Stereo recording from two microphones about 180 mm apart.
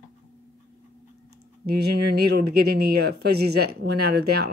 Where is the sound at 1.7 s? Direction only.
60° right (ahead or behind).